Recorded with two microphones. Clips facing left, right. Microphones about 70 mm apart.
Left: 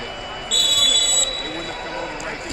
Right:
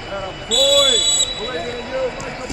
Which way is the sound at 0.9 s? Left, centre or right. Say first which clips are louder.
Right 3 dB; centre.